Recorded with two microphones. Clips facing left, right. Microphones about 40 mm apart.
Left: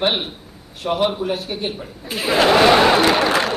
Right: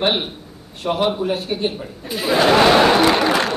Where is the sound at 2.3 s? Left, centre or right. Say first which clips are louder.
Even; centre.